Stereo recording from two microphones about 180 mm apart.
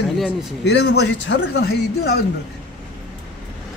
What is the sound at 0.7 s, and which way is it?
Speech, 65° left (ahead or behind).